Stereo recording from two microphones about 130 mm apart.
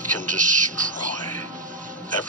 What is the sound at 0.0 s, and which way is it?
Music, 80° right.